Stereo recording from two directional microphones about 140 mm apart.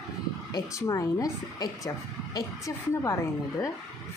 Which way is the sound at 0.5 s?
25° left (ahead or behind).